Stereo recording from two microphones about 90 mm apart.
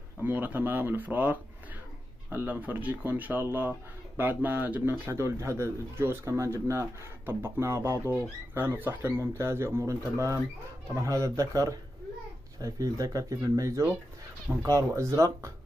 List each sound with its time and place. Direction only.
0.2 s speech: 20° right (ahead or behind); by 15.5 s 35° right (ahead or behind)